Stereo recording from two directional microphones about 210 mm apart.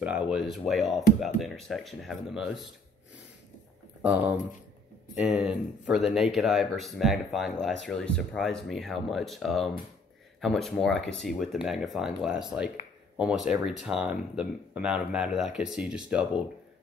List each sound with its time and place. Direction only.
0.3 s speech: 5° right (ahead or behind)
4.0 s speech: 5° right (ahead or behind)